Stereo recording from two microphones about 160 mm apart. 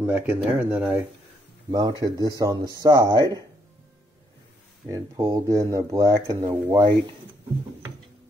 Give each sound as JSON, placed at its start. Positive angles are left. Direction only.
{"t": 0.0, "sound": "speech", "side_deg": -10}
{"t": 1.7, "sound": "speech", "side_deg": -25}
{"t": 4.8, "sound": "speech", "side_deg": -20}